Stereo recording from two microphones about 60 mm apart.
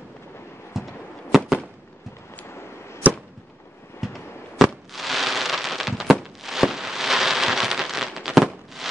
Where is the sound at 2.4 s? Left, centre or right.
Left.